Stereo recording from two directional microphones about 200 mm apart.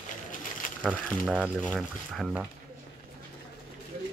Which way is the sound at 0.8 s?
5° right (ahead or behind).